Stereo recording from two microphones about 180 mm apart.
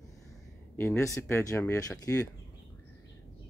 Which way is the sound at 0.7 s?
15° left (ahead or behind).